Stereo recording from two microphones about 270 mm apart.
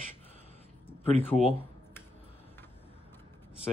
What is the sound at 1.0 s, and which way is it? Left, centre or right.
Speech, left.